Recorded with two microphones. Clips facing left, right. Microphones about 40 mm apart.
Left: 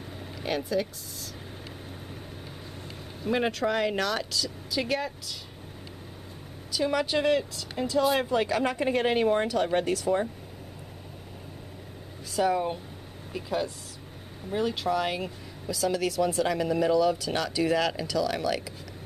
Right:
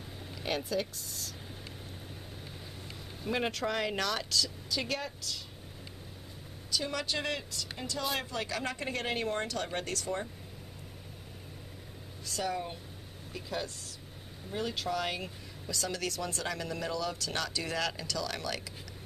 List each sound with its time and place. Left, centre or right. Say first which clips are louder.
0.4 s speech: left 5 dB; centre
3.3 s speech: left 6 dB; centre
6.7 s speech: left 8 dB; centre
12.3 s speech: left 9 dB; centre